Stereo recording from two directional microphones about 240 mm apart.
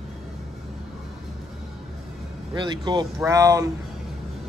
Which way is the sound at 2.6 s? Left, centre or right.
Centre.